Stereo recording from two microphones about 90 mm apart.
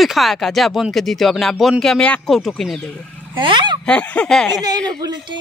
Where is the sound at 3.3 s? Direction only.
65° right (ahead or behind).